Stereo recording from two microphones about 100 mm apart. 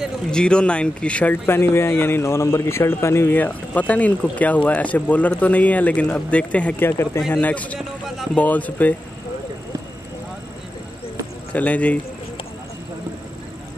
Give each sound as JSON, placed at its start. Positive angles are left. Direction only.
{"t": 0.3, "sound": "speech", "side_deg": 10}
{"t": 6.9, "sound": "speech", "side_deg": 25}
{"t": 7.3, "sound": "speech", "side_deg": 15}
{"t": 11.5, "sound": "speech", "side_deg": 15}